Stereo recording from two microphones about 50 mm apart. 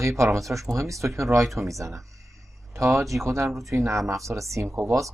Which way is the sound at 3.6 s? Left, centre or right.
Right.